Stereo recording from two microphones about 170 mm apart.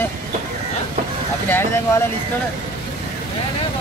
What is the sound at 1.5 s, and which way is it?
Speech, 15° left (ahead or behind).